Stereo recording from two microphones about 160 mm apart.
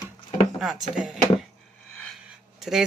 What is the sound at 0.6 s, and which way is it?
Speech, centre (ahead or behind).